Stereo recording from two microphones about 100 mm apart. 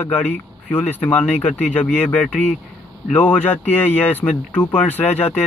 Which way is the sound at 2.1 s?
10° left (ahead or behind).